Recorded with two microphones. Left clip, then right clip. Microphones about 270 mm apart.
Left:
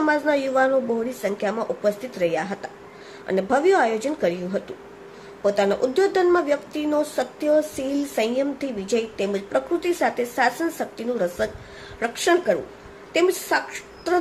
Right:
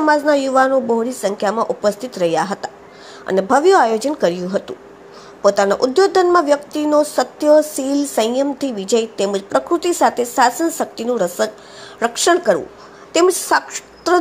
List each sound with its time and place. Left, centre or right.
0.0 s speech: centre